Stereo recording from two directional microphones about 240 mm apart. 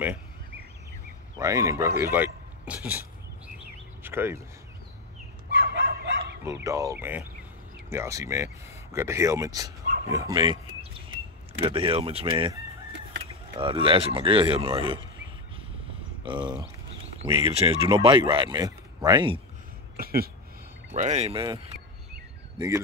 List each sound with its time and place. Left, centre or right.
1.4 s speech: centre
3.5 s a sound: centre
5.5 s chicken: right
6.4 s speech: centre
10.1 s a sound: centre
11.6 s speech: right
13.6 s speech: right
16.3 s speech: centre
20.0 s speech: right